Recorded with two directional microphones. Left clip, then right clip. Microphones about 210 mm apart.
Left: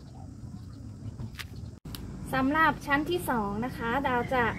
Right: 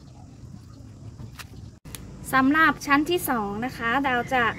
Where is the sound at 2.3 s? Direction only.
40° right (ahead or behind).